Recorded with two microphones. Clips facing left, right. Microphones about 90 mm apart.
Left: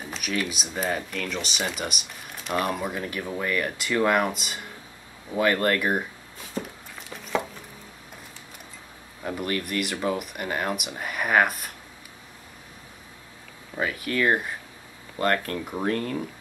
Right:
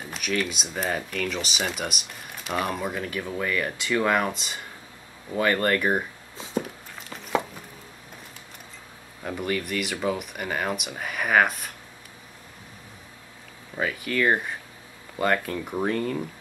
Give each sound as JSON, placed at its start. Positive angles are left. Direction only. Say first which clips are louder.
{"t": 0.0, "sound": "speech", "louder": "right 1 dB", "side_deg": 0}
{"t": 6.3, "sound": "a sound", "louder": "right 5 dB", "side_deg": -20}
{"t": 9.2, "sound": "speech", "louder": "even", "side_deg": 0}
{"t": 13.7, "sound": "speech", "louder": "even", "side_deg": 0}